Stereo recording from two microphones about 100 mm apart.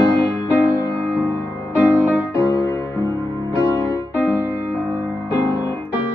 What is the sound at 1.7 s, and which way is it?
Music, 25° left (ahead or behind).